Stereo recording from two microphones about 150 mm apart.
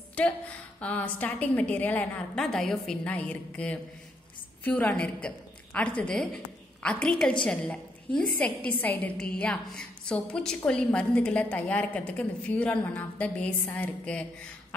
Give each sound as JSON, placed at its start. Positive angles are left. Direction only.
{"t": 0.2, "sound": "a woman's voice", "side_deg": 10}